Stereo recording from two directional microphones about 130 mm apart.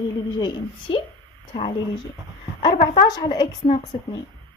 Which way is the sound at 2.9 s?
30° left (ahead or behind).